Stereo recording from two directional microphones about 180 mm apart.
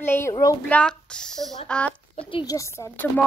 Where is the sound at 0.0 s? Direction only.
15° left (ahead or behind).